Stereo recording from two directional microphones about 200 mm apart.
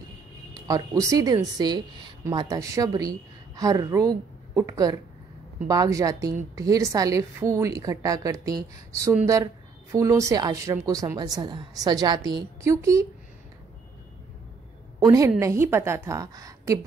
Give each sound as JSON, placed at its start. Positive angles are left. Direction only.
{"t": 0.6, "sound": "speech", "side_deg": -15}
{"t": 15.0, "sound": "speech", "side_deg": -15}